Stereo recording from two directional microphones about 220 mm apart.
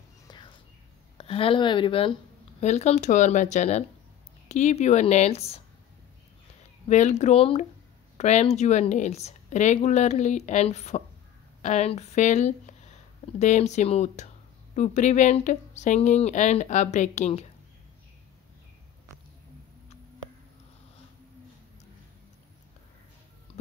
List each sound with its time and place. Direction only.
0.3 s whispering: 20° left (ahead or behind)
1.1 s speech: 25° left (ahead or behind)
6.9 s speech: 30° left (ahead or behind)
23.5 s a sound: 30° left (ahead or behind)